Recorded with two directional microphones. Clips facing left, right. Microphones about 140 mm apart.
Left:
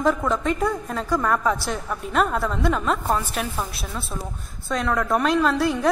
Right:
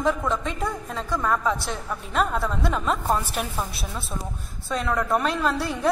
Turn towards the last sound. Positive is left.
turn(degrees=0)  # may be behind; listen again after turning